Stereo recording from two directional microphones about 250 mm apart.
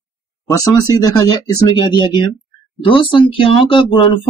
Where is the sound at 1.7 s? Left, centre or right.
Centre.